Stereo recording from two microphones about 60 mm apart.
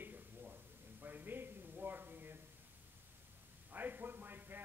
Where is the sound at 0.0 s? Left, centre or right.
Right.